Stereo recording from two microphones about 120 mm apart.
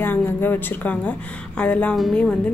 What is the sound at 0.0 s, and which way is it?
Speech, 15° left (ahead or behind).